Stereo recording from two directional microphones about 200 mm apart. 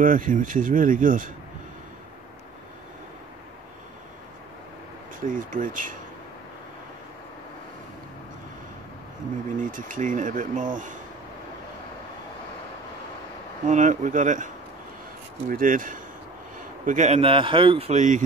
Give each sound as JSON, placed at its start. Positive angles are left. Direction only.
{"t": 0.0, "sound": "a man's voice", "side_deg": -40}
{"t": 5.2, "sound": "a man's voice", "side_deg": -40}
{"t": 9.7, "sound": "a man's voice", "side_deg": -40}
{"t": 13.7, "sound": "a man's voice", "side_deg": -35}